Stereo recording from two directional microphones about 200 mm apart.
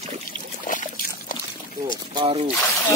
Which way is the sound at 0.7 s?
40° left (ahead or behind).